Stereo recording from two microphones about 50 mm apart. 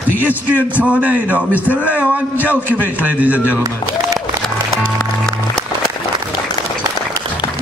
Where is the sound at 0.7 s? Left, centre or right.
Right.